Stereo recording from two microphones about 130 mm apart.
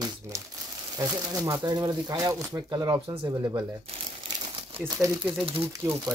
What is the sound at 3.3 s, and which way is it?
Speech, 30° right (ahead or behind).